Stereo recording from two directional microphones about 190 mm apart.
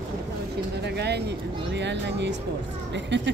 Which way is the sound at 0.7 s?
60° right (ahead or behind).